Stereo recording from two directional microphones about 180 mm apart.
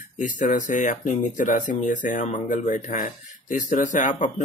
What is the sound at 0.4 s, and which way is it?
Speech, 45° left (ahead or behind).